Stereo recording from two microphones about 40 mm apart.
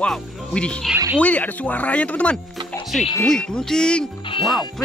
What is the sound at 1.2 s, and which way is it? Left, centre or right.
Speech, left.